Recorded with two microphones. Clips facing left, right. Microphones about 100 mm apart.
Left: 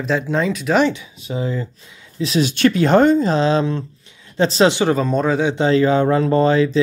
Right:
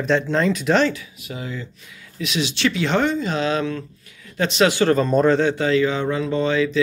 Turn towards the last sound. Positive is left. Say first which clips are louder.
# left 5 dB
turn(degrees=35)  # may be behind; listen again after turning